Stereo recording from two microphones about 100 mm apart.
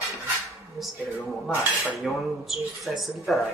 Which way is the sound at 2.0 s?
Centre (ahead or behind).